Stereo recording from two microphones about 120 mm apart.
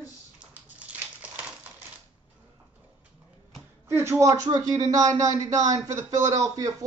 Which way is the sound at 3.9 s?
20° right (ahead or behind).